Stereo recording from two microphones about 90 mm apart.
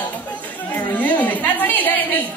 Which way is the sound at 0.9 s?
20° left (ahead or behind).